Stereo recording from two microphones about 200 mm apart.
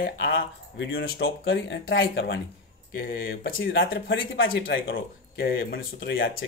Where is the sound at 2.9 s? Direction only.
45° left (ahead or behind); by 4.9 s 65° left (ahead or behind).